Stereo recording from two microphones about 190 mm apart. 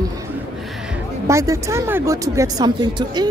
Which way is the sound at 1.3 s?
15° right (ahead or behind).